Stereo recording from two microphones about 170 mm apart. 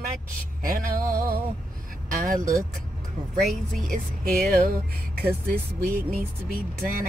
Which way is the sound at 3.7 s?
55° right (ahead or behind).